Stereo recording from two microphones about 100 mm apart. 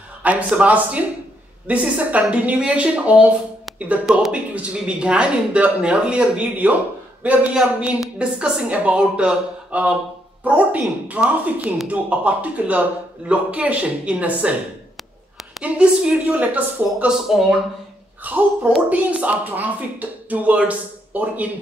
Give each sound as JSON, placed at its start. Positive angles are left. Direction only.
{"t": 0.2, "sound": "a sound", "side_deg": -15}
{"t": 0.6, "sound": "speech", "side_deg": -15}
{"t": 15.6, "sound": "speech", "side_deg": -10}
{"t": 17.3, "sound": "speech", "side_deg": -5}
{"t": 18.2, "sound": "speech", "side_deg": -15}